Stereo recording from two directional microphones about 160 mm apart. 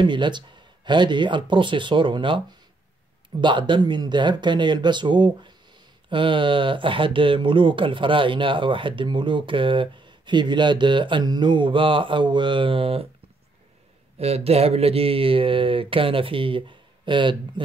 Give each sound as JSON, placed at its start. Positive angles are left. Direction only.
{"t": 0.0, "sound": "speech", "side_deg": -30}
{"t": 14.1, "sound": "speech", "side_deg": -40}